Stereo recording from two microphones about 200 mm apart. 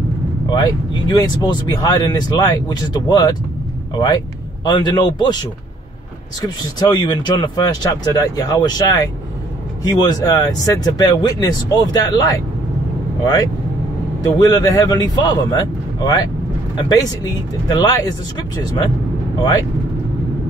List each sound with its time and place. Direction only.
0.5 s speech: 20° left (ahead or behind)